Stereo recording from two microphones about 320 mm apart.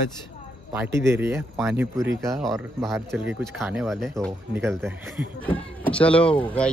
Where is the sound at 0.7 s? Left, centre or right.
Centre.